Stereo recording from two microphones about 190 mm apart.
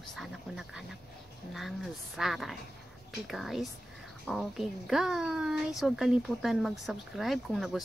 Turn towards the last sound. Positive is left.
turn(degrees=0)  # may be behind; listen again after turning